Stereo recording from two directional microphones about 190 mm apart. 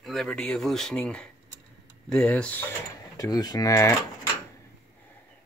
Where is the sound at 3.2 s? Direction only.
20° left (ahead or behind).